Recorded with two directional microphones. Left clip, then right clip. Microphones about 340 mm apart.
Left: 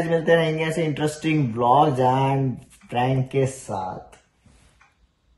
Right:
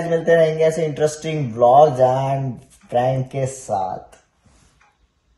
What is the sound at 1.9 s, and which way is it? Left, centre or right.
Speech, right.